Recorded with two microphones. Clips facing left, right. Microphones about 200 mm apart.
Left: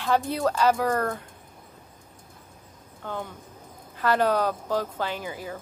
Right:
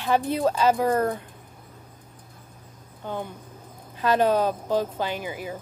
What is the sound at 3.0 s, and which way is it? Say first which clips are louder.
Speech: right 2 dB; 15° right (ahead or behind).